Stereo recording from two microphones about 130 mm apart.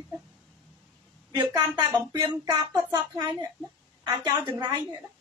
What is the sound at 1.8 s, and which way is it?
A woman's voice, 30° right (ahead or behind).